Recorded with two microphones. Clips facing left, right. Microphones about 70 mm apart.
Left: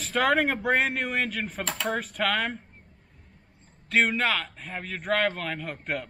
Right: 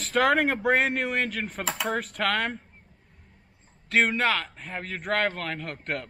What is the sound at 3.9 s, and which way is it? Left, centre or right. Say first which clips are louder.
Speech: right 1 dB; centre.